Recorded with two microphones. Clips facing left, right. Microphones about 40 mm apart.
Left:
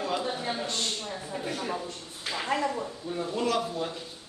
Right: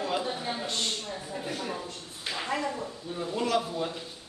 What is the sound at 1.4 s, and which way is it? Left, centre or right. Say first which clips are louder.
Speech: left 2 dB; left.